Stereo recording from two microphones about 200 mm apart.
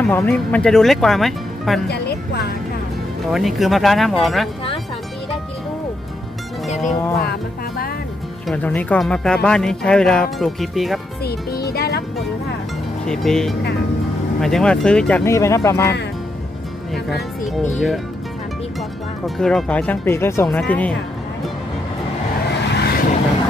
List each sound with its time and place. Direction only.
0.0 s speech: 5° left (ahead or behind)
1.9 s music: 55° left (ahead or behind)
3.3 s speech: centre (ahead or behind)
8.5 s speech: 10° left (ahead or behind)
11.7 s music: 50° left (ahead or behind)
13.0 s speech: 5° left (ahead or behind)
17.7 s speech: centre (ahead or behind)
19.2 s speech: centre (ahead or behind)
22.7 s vehicle: 55° left (ahead or behind)